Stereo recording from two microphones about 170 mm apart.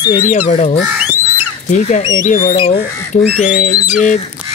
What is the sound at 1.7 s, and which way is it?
Speech, 40° left (ahead or behind).